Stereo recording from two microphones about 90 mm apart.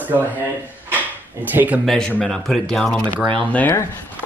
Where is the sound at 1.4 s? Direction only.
20° right (ahead or behind).